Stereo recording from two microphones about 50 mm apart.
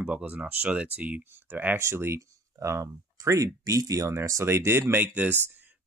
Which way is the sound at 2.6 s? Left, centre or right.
Right.